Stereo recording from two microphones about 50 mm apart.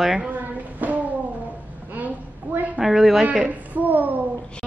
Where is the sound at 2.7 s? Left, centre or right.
Centre.